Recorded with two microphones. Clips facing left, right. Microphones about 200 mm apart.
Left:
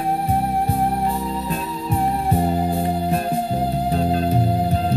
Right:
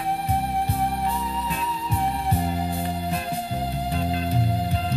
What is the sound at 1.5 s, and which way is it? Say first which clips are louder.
Music: left 4 dB; 40° left (ahead or behind).